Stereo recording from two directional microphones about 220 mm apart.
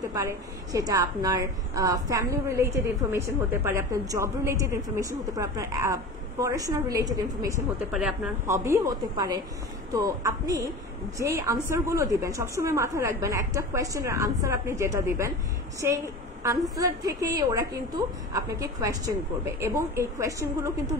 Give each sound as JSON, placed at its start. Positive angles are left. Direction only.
{"t": 0.1, "sound": "a woman's voice", "side_deg": -15}
{"t": 7.9, "sound": "speech", "side_deg": 0}
{"t": 8.5, "sound": "a woman's voice", "side_deg": -10}